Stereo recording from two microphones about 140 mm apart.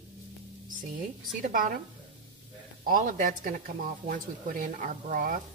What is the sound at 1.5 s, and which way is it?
Speech, 75° right (ahead or behind).